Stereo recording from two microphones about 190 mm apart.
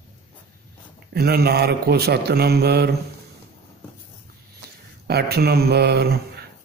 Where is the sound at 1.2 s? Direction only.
55° right (ahead or behind).